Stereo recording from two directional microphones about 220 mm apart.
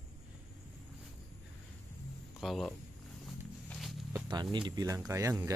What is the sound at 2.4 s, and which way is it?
Speech, centre (ahead or behind).